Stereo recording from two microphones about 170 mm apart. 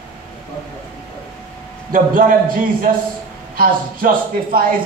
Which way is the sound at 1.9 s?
55° right (ahead or behind).